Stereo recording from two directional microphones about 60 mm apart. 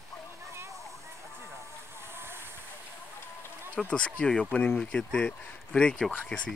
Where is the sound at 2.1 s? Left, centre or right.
Right.